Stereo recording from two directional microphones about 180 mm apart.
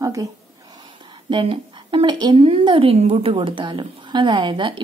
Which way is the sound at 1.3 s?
25° right (ahead or behind).